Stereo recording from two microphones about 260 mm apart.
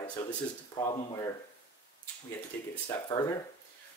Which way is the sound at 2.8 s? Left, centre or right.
Centre.